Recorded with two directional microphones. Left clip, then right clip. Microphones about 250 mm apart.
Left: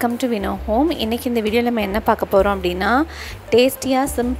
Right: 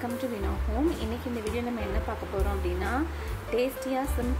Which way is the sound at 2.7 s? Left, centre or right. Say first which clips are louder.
Left 13 dB; left.